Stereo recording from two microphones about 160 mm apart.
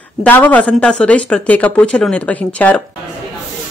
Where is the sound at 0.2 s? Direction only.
10° left (ahead or behind).